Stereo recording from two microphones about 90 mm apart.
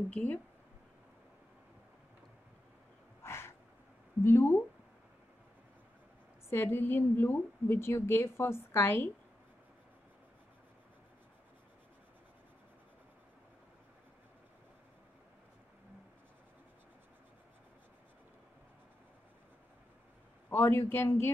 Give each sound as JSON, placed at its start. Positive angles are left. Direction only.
{"t": 0.1, "sound": "speech", "side_deg": 15}
{"t": 3.3, "sound": "a sound", "side_deg": 30}
{"t": 4.2, "sound": "speech", "side_deg": 30}
{"t": 6.5, "sound": "a woman's voice", "side_deg": 25}
{"t": 20.4, "sound": "a woman's voice", "side_deg": 25}